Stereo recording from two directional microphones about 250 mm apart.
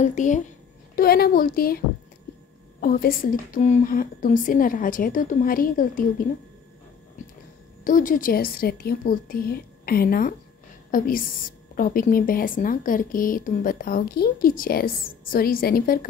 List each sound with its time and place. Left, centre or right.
0.0 s a woman's voice: left
2.8 s a woman's voice: left
7.8 s a woman's voice: left